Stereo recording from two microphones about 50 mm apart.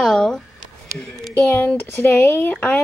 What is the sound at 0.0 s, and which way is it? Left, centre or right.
Speech, centre.